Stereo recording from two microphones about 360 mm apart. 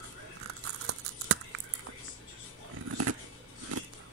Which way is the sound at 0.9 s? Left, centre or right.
Right.